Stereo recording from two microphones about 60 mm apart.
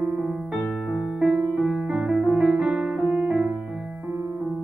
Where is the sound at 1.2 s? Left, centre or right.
Centre.